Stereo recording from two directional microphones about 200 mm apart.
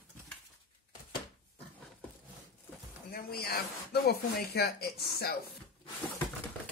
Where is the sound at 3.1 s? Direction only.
50° left (ahead or behind).